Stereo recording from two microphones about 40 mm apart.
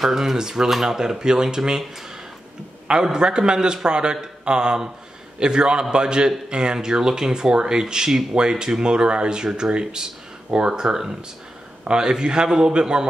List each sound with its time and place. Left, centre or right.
0.0 s speech: centre
2.9 s a man's voice: centre